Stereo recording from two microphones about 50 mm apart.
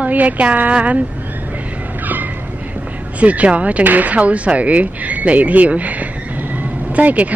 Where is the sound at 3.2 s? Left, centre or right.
Right.